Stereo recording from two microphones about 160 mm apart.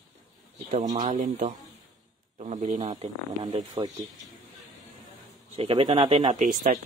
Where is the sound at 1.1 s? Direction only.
50° right (ahead or behind).